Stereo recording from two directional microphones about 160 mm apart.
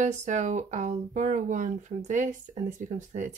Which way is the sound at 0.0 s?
50° right (ahead or behind).